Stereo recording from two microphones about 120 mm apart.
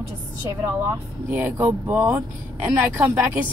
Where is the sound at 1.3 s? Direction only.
15° right (ahead or behind).